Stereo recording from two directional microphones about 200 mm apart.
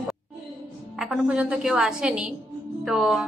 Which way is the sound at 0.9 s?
5° right (ahead or behind).